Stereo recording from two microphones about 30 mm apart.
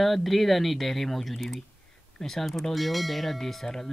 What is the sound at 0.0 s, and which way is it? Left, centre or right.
Speech, centre.